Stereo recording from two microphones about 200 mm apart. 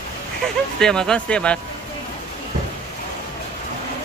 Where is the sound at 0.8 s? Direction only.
5° left (ahead or behind).